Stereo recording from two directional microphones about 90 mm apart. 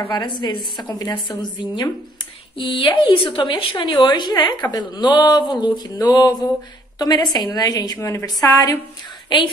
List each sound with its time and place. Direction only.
0.1 s a woman's voice: 50° left (ahead or behind)
2.5 s a woman's voice: 70° left (ahead or behind); by 8.7 s 40° left (ahead or behind)
9.3 s speech: 55° left (ahead or behind)